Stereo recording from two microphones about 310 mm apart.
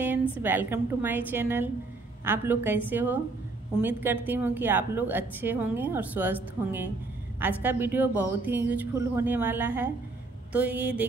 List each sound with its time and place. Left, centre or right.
0.4 s a woman's voice: centre